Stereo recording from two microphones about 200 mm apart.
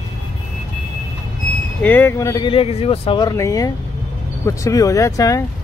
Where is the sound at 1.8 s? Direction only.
10° left (ahead or behind).